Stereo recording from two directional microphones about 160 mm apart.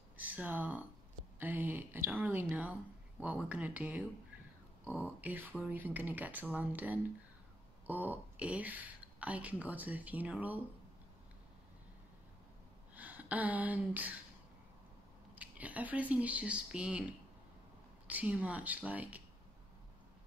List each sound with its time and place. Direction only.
0.2 s speech: 10° right (ahead or behind)
12.9 s a sound: 10° right (ahead or behind)
15.3 s speech: 10° right (ahead or behind)
18.0 s speech: 10° right (ahead or behind)